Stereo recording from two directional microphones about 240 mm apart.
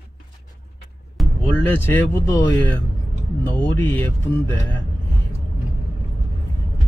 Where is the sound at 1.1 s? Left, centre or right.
Centre.